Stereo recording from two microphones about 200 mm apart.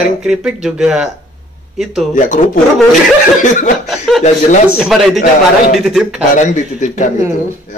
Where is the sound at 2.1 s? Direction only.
40° left (ahead or behind).